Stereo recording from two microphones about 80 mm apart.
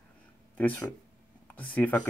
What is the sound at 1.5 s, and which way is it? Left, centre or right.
Speech, centre.